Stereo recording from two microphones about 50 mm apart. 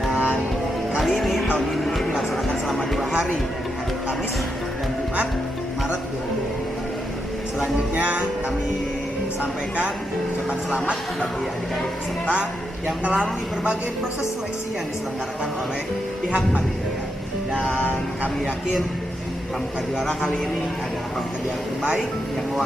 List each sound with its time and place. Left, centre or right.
0.1 s music: right
1.1 s music: centre
12.4 s speech: centre
16.3 s speech: centre